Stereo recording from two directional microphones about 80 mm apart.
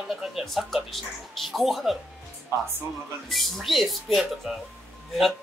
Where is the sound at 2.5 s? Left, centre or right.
Right.